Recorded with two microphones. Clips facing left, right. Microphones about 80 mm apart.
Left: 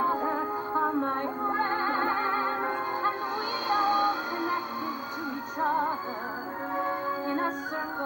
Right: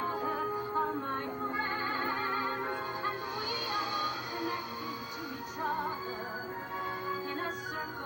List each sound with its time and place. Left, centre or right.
0.0 s music: left
5.6 s music: left